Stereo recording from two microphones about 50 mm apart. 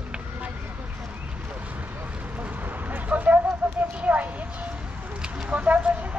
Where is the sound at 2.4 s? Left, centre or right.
Right.